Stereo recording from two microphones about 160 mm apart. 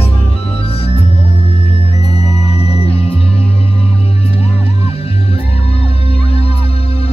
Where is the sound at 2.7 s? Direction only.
35° left (ahead or behind).